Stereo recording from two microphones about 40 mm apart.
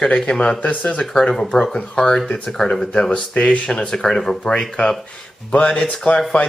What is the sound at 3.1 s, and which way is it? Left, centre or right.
Speech, left.